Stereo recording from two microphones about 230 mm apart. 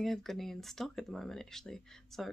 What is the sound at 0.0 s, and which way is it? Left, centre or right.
Speech, centre.